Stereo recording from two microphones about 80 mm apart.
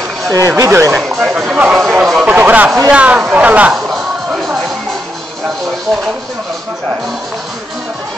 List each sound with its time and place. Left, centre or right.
0.3 s speech: right
0.9 s speech: centre
2.2 s speech: right